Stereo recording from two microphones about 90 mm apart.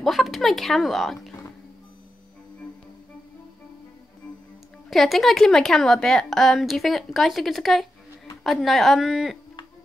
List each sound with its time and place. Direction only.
0.0 s a woman's voice: centre (ahead or behind)
4.8 s a woman's voice: centre (ahead or behind)